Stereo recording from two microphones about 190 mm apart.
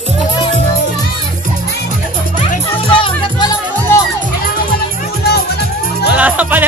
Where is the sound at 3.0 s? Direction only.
20° left (ahead or behind).